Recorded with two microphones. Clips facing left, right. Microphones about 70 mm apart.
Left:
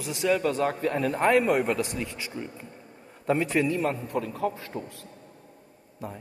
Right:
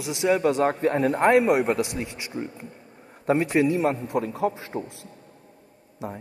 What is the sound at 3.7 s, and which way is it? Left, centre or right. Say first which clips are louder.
A man's voice: right 4 dB; centre.